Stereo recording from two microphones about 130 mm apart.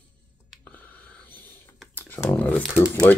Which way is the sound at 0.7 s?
10° left (ahead or behind).